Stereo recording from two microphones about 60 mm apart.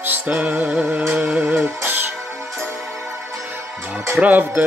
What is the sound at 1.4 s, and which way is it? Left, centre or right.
Music, right.